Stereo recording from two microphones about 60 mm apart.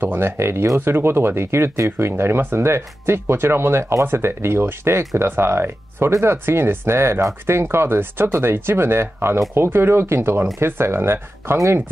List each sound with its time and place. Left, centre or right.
0.0 s speech: right